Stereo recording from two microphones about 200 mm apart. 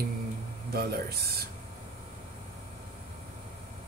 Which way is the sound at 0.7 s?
50° right (ahead or behind).